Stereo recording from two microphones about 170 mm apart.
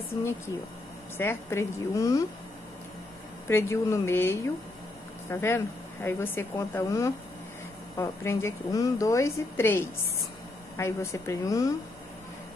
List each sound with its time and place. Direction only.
1.1 s a woman's voice: 15° left (ahead or behind)
3.4 s a woman's voice: 15° left (ahead or behind)